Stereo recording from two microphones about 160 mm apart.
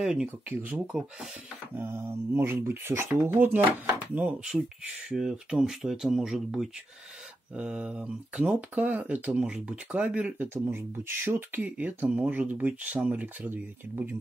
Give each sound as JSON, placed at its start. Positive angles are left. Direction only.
{"t": 0.0, "sound": "speech", "side_deg": -5}